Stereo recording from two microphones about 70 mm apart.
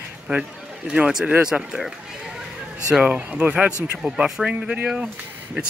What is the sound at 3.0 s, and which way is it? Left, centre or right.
Speech, centre.